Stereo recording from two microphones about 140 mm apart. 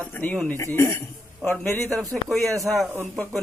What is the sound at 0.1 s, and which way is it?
A man's voice, 10° left (ahead or behind).